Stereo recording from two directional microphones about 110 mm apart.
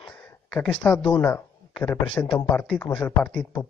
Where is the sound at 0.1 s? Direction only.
10° left (ahead or behind).